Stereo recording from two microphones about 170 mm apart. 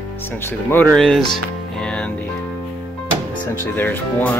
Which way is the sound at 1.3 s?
5° left (ahead or behind).